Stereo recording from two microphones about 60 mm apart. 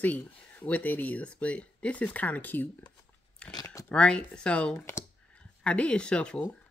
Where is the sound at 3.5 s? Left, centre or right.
Left.